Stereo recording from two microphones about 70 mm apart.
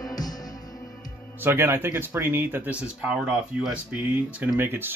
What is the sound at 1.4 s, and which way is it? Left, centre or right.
Speech, right.